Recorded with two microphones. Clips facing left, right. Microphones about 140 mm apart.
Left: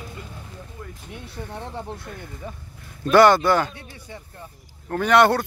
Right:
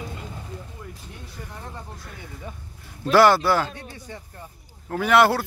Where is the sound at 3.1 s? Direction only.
5° right (ahead or behind).